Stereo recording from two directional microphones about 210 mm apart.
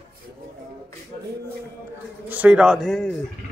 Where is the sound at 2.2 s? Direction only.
5° right (ahead or behind).